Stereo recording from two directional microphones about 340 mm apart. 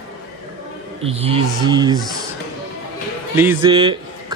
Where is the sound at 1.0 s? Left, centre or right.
Centre.